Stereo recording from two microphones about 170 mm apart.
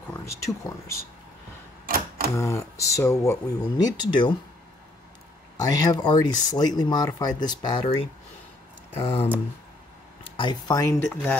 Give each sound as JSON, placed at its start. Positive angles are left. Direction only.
{"t": 0.1, "sound": "speech", "side_deg": 20}
{"t": 1.9, "sound": "typewriter", "side_deg": -55}
{"t": 2.3, "sound": "speech", "side_deg": 20}
{"t": 5.6, "sound": "speech", "side_deg": 20}
{"t": 10.3, "sound": "speech", "side_deg": 25}